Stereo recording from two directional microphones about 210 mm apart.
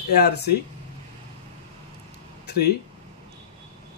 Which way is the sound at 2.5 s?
50° left (ahead or behind).